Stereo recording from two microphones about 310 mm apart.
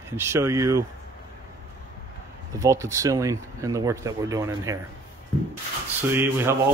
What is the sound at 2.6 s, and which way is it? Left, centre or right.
Speech, centre.